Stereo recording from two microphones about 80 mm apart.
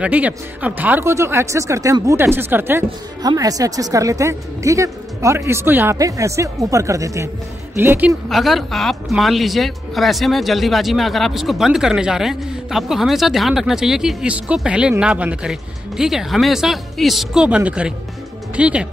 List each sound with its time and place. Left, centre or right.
0.0 s speech: centre
1.0 s speech: right
2.0 s speech: right
3.2 s speech: right
5.9 s speech: right
7.7 s speech: right
8.3 s speech: centre